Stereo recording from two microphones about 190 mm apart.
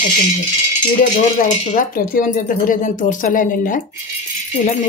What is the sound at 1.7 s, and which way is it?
Speech, 45° left (ahead or behind).